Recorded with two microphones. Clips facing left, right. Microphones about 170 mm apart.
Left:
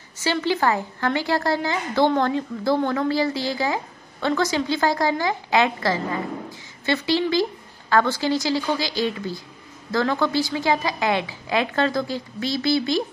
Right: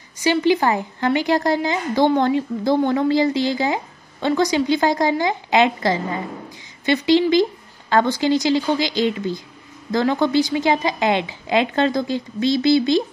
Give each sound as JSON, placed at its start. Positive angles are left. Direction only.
{"t": 0.2, "sound": "a woman's voice", "side_deg": -15}